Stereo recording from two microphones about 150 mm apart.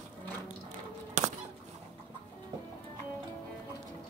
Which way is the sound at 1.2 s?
55° right (ahead or behind).